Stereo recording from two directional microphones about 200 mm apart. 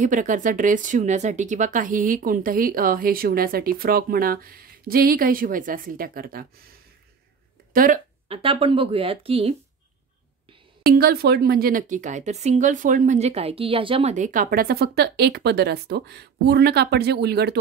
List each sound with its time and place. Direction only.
0.0 s speech: 40° right (ahead or behind)
7.7 s speech: 45° right (ahead or behind)
8.3 s speech: 30° right (ahead or behind)
10.9 s speech: 50° right (ahead or behind)